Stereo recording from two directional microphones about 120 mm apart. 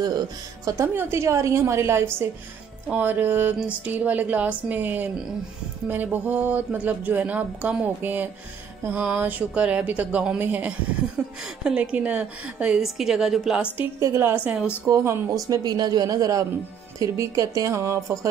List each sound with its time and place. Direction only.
0.7 s a woman's voice: 25° right (ahead or behind); by 13.7 s 5° right (ahead or behind)
13.7 s speech: 20° right (ahead or behind)
14.9 s a woman's voice: 20° right (ahead or behind)
15.4 s a woman's voice: 35° right (ahead or behind)